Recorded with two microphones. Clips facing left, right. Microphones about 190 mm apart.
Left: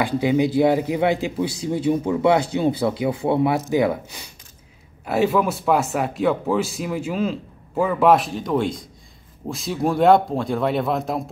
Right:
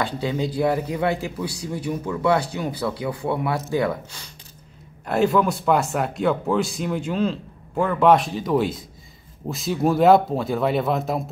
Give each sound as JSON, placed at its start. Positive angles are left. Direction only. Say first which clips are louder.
{"t": 0.0, "sound": "speech", "louder": "left 6 dB", "side_deg": 15}
{"t": 5.0, "sound": "speech", "louder": "even", "side_deg": 0}